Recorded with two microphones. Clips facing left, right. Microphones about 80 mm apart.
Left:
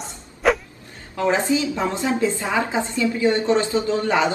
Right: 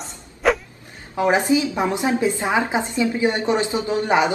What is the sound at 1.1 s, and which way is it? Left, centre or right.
A woman's voice, centre.